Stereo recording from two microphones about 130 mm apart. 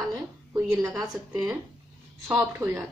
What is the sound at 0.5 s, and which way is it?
Speech, 25° right (ahead or behind).